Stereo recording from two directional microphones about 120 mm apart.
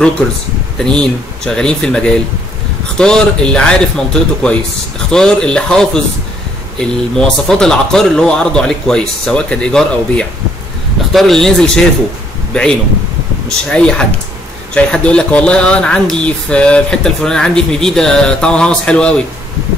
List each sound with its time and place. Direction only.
0.7 s a man's voice: 5° left (ahead or behind)
13.7 s speech: 10° left (ahead or behind)